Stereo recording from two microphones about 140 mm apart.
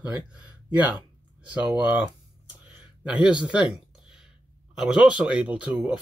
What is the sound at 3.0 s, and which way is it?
Speech, 10° right (ahead or behind).